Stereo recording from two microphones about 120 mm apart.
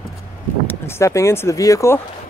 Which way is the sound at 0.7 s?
20° left (ahead or behind).